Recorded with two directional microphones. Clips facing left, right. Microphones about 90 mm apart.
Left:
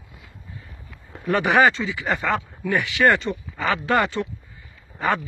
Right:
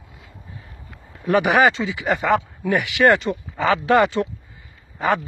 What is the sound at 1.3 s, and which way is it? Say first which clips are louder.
Speech: right 2 dB; 20° right (ahead or behind).